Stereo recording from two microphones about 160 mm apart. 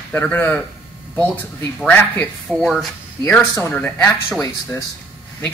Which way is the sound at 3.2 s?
15° left (ahead or behind).